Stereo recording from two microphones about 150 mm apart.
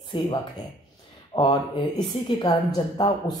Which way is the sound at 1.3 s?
30° left (ahead or behind).